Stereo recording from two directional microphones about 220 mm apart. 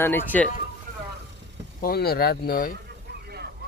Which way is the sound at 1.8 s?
45° left (ahead or behind).